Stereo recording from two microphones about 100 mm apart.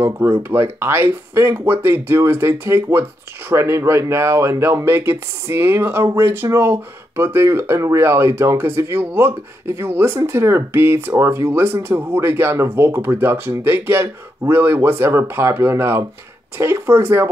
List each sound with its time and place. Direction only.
0.0 s speech: 25° right (ahead or behind)